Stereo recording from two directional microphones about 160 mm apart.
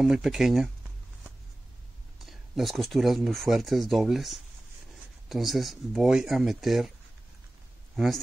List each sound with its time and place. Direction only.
0.0 s speech: 5° right (ahead or behind)
2.2 s speech: centre (ahead or behind)
7.9 s speech: centre (ahead or behind)